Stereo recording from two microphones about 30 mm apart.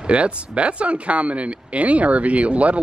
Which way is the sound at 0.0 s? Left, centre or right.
Right.